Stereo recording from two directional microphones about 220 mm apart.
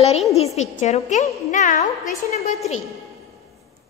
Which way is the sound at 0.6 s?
30° left (ahead or behind).